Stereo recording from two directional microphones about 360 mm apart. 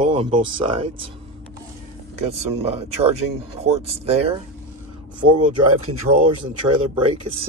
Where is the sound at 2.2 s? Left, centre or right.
Centre.